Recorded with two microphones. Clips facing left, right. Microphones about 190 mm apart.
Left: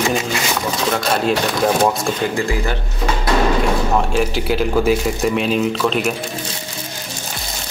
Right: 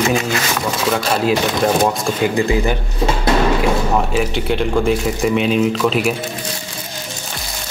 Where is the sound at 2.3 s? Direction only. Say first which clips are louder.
Right 4 dB; 20° right (ahead or behind).